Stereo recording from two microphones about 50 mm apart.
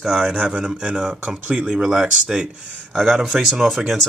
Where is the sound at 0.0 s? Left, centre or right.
Centre.